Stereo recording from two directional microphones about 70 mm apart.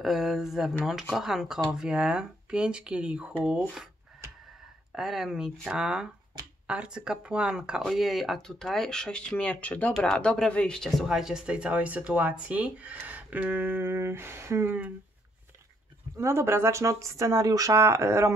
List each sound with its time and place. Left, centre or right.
0.0 s speech: centre
4.9 s speech: centre; by 9.9 s left
9.9 s speech: centre
11.1 s speech: centre; by 14.7 s right
16.2 s speech: right